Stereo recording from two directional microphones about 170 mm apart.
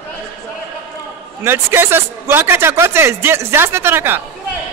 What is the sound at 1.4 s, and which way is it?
Speech, 15° right (ahead or behind).